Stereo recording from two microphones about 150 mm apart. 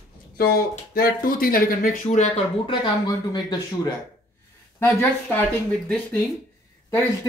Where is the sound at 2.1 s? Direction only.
50° left (ahead or behind).